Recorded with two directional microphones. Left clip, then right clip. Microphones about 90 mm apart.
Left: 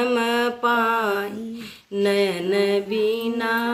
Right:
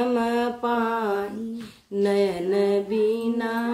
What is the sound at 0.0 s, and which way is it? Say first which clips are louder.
Mantra: left 3 dB; 40° right (ahead or behind).